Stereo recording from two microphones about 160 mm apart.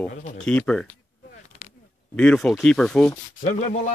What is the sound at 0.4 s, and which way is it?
Speech, 5° left (ahead or behind).